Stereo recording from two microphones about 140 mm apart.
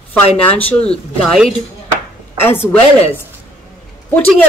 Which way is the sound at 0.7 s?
45° left (ahead or behind).